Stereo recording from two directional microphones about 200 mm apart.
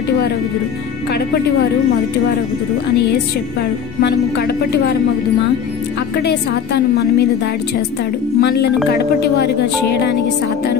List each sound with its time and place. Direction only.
1.1 s a woman's voice: 55° left (ahead or behind)
4.0 s speech: 55° left (ahead or behind)
6.2 s a woman's voice: 55° left (ahead or behind)
8.4 s a woman's voice: 55° left (ahead or behind)